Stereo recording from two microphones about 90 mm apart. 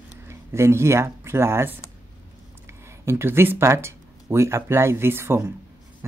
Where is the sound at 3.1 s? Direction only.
25° right (ahead or behind).